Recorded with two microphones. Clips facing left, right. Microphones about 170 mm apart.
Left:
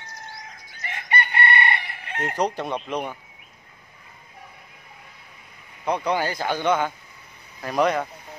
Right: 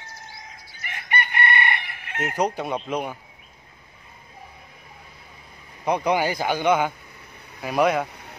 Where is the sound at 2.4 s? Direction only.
5° right (ahead or behind).